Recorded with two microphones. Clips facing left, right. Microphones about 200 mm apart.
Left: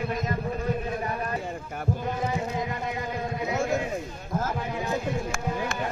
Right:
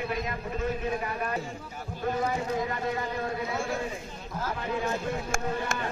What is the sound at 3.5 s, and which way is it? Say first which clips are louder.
Sheep: left 5 dB; 45° left (ahead or behind).